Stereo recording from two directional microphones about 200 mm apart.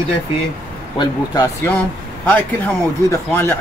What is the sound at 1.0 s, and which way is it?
Speech, 20° left (ahead or behind).